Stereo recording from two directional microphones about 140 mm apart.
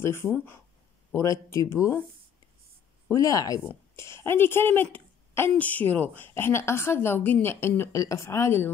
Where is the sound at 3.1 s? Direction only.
25° left (ahead or behind).